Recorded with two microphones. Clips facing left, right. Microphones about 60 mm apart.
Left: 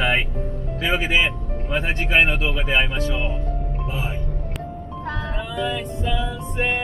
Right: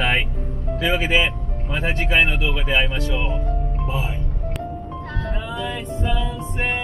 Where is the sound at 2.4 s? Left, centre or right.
Centre.